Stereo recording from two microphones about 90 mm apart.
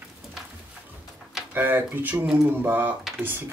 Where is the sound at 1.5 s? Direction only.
20° right (ahead or behind).